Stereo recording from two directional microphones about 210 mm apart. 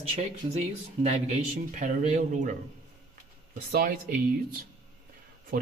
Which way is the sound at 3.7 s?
45° right (ahead or behind).